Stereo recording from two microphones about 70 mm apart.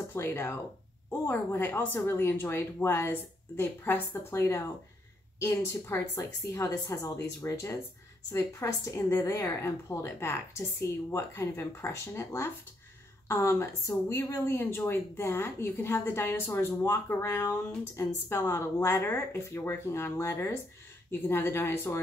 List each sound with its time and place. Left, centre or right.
0.1 s a woman's voice: left
6.6 s a woman's voice: left
7.0 s a woman's voice: left